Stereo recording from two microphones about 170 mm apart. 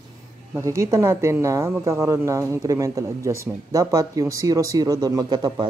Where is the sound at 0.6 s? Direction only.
20° right (ahead or behind).